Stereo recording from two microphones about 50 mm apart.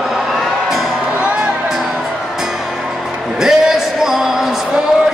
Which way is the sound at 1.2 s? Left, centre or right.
Right.